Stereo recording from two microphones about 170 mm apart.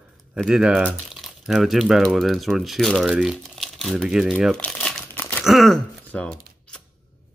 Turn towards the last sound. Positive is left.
turn(degrees=5)  # may be behind; listen again after turning